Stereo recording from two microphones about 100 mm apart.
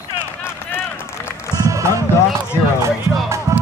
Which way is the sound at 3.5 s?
35° right (ahead or behind).